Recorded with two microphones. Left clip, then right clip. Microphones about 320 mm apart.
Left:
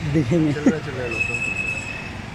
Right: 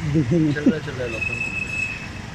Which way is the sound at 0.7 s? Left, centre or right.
Left.